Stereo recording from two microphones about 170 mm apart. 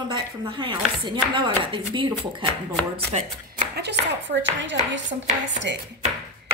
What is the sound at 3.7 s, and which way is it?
Speech, 85° right.